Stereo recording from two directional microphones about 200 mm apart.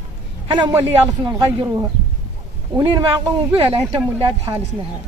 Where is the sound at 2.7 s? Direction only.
10° right (ahead or behind).